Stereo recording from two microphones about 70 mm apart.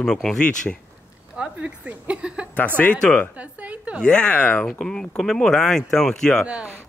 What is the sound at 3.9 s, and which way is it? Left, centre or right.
Speech, centre.